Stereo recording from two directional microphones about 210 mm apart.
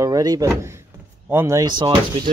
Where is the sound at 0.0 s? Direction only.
15° right (ahead or behind).